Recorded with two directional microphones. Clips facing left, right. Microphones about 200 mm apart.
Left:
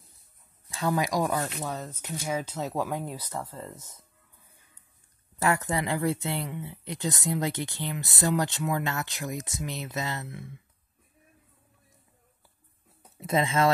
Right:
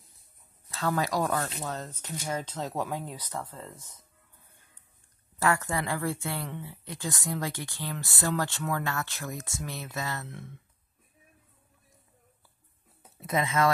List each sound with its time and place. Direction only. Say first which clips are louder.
0.7 s speech: left 2 dB; 15° left (ahead or behind)
5.4 s speech: left 1 dB; 20° left (ahead or behind)
13.2 s speech: left 2 dB; 25° left (ahead or behind)